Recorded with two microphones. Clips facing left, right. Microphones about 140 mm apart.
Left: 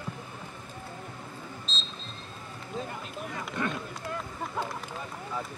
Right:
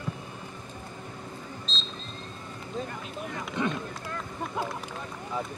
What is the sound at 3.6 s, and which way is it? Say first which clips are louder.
Speech: right 3 dB; 20° right (ahead or behind).